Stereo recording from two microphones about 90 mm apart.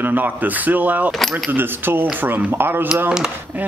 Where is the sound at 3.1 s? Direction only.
10° right (ahead or behind).